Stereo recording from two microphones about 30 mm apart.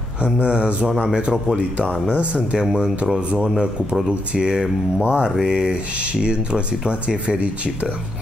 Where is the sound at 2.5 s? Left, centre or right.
Right.